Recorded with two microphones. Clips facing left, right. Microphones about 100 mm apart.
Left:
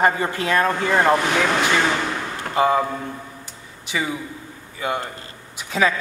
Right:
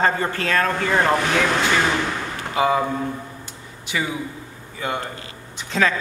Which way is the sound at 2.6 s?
5° right (ahead or behind).